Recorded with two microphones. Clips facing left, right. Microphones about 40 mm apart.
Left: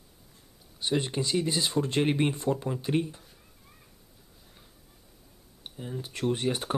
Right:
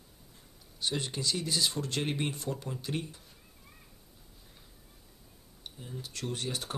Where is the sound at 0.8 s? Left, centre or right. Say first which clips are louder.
Left 5 dB; centre.